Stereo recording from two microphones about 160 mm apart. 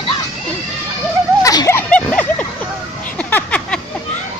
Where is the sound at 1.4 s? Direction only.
20° left (ahead or behind).